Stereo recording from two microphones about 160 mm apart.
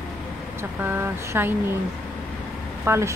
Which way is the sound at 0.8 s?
15° right (ahead or behind).